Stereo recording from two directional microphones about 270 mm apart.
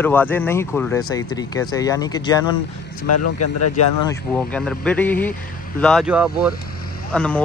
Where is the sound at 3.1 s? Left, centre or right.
Left.